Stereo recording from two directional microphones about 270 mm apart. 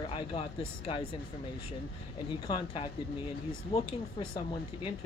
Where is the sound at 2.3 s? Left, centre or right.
Centre.